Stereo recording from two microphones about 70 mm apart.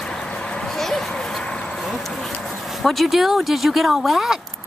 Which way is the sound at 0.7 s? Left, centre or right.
Centre.